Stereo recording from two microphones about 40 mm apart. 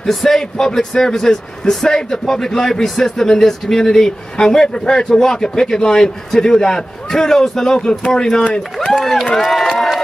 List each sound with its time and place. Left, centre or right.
0.0 s a man's voice: centre
9.0 s a man's voice: centre